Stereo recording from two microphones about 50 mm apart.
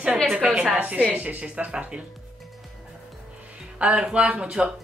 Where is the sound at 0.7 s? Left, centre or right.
Right.